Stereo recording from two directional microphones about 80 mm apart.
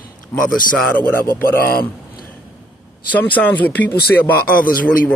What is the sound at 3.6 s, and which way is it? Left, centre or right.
Speech, centre.